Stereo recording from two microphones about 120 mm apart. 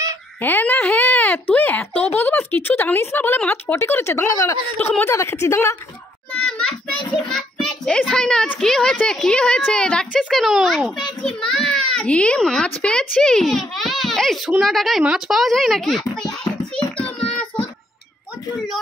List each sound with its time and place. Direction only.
0.4 s speech: 15° left (ahead or behind)
6.3 s a sound: 10° left (ahead or behind)
7.2 s a child's voice: 5° left (ahead or behind)
16.7 s child singing: 10° left (ahead or behind)